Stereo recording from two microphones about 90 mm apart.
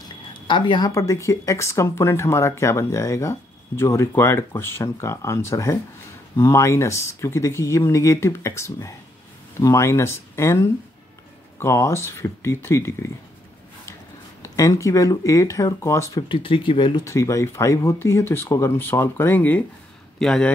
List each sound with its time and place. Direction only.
0.3 s a woman's voice: 60° left (ahead or behind)
0.9 s speech: 35° left (ahead or behind)
14.4 s speech: 35° left (ahead or behind)
16.3 s speech: 75° left (ahead or behind)
17.0 s speech: 35° left (ahead or behind)
20.2 s speech: 10° left (ahead or behind)